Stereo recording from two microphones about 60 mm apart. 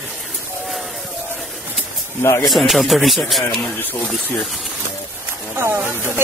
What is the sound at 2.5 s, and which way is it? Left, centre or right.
Speech, centre.